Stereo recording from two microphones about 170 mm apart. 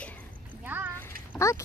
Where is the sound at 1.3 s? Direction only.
15° left (ahead or behind).